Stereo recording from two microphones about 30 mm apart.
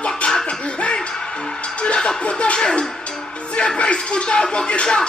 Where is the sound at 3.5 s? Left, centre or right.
Left.